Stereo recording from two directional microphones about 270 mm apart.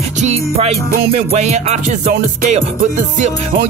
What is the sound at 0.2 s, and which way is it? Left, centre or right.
Music, right.